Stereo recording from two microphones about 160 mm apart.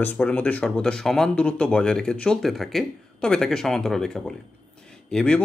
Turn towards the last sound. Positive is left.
turn(degrees=5)  # may be behind; listen again after turning